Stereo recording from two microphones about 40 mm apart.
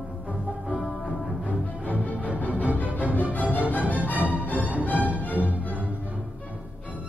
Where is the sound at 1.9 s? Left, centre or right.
Right.